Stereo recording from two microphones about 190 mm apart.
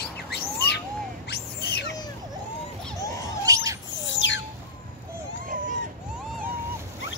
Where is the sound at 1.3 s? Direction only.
60° left (ahead or behind).